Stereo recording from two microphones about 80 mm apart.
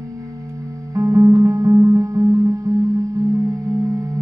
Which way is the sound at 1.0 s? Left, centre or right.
Right.